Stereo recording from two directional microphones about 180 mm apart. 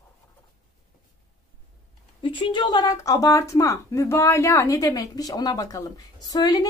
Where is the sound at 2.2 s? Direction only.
30° left (ahead or behind).